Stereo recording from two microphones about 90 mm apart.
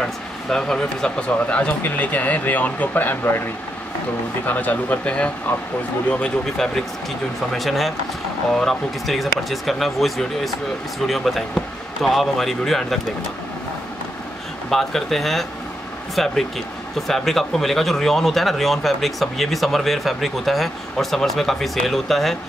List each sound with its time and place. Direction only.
0.0 s speech: 5° left (ahead or behind); by 3.4 s 20° left (ahead or behind)
4.5 s speech: 20° left (ahead or behind); by 13.0 s 5° left (ahead or behind)
14.7 s speech: 5° left (ahead or behind)